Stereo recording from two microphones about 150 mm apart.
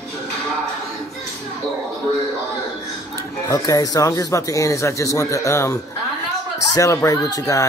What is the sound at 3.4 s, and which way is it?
Speech, 20° left (ahead or behind).